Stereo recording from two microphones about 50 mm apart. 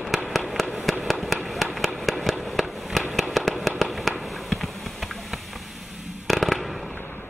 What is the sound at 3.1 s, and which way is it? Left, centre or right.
Fireworks, centre.